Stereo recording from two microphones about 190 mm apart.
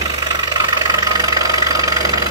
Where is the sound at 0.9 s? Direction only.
20° right (ahead or behind).